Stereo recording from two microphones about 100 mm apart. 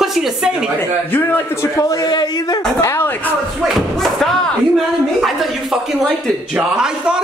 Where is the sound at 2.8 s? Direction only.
25° left (ahead or behind).